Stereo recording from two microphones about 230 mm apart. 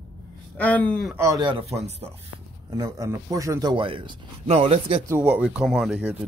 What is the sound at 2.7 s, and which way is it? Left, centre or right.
Speech, centre.